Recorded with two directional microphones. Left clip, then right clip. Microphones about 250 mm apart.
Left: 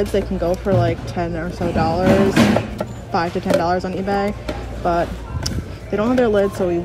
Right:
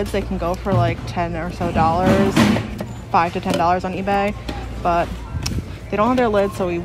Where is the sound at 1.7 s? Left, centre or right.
Right.